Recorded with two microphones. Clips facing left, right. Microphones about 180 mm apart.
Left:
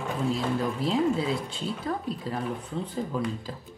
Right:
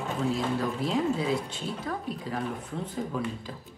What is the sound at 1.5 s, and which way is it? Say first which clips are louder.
Speech: left 2 dB; 30° left (ahead or behind).